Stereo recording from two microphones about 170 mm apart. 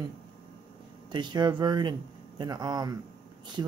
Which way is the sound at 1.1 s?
25° right (ahead or behind).